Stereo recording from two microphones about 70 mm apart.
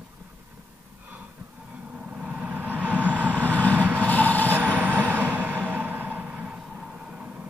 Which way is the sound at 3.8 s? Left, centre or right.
Right.